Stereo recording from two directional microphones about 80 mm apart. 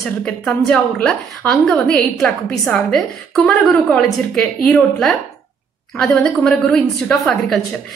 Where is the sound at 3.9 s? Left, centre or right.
Centre.